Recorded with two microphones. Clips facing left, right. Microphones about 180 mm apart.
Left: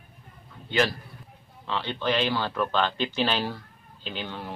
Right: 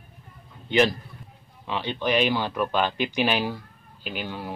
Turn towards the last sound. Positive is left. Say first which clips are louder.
# right 2 dB
turn(degrees=-10)  # may be behind; listen again after turning